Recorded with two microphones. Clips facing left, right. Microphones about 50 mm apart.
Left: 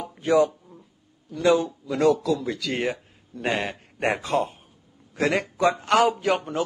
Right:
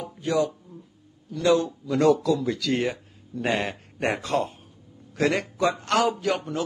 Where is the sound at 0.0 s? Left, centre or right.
Left.